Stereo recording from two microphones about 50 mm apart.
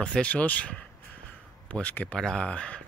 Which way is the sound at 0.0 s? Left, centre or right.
Centre.